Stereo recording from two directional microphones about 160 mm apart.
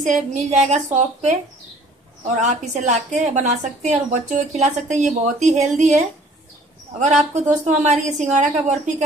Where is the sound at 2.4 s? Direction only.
45° right (ahead or behind).